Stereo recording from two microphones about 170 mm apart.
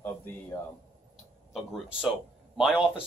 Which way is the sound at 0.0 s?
10° left (ahead or behind).